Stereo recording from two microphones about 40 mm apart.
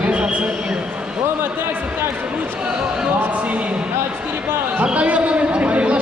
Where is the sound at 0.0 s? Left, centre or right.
Right.